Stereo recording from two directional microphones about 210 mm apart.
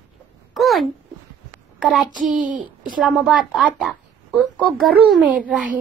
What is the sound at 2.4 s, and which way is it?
Speech, 40° right (ahead or behind).